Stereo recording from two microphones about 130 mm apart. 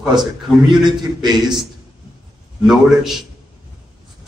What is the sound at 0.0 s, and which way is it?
A man's voice, 35° right (ahead or behind).